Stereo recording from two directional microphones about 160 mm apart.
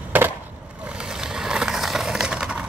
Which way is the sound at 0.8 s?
5° right (ahead or behind).